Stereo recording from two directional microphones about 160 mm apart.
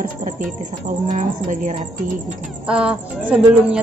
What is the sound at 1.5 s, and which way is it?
Speech, 50° right (ahead or behind).